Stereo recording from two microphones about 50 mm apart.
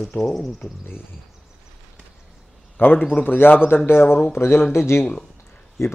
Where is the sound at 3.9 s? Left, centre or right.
Left.